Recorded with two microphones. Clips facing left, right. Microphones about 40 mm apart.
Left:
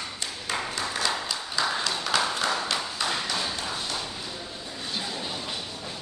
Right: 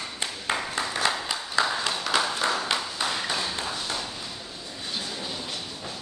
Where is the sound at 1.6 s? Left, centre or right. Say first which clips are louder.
Right 3 dB; right.